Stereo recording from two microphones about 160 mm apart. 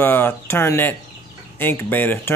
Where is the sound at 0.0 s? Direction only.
10° left (ahead or behind).